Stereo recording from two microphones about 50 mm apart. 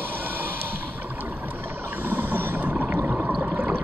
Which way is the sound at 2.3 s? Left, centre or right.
Right.